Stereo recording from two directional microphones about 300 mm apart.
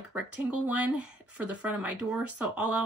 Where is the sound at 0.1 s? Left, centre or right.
Centre.